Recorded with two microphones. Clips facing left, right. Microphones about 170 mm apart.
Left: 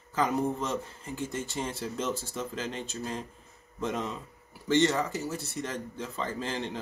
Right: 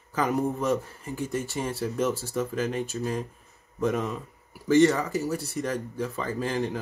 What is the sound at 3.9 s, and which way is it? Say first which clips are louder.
Speech: right 3 dB; 20° left (ahead or behind).